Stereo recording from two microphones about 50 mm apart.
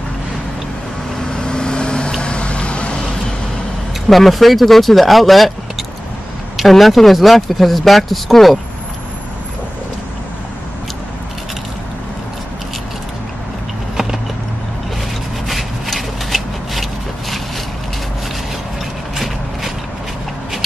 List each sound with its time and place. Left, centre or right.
1.3 s vehicle: centre
4.1 s speech: centre
6.5 s speech: centre
15.4 s rub: centre
19.1 s a sound: centre